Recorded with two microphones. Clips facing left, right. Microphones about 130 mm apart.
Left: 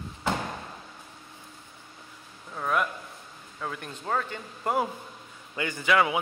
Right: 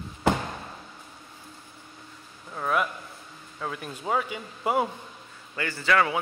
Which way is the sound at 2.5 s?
5° right (ahead or behind).